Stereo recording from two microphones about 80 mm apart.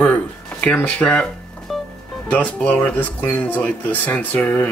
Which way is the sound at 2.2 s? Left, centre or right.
Centre.